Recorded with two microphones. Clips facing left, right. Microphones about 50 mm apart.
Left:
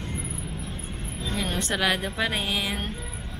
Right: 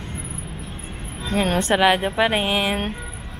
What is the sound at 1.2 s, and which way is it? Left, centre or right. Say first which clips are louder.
Speech: right 9 dB; right.